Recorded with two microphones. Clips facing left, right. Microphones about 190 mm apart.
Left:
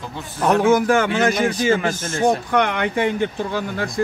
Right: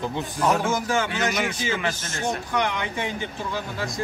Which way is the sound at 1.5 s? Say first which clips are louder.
Left 8 dB; 40° left (ahead or behind).